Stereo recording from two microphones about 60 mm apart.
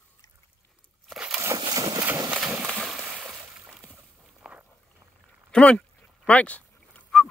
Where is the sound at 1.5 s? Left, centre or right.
Right.